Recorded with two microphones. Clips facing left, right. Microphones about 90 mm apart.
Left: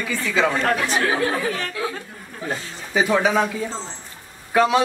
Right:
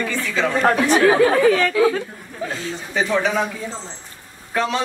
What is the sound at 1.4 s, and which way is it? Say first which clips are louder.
Speech: right 10 dB; 90° right.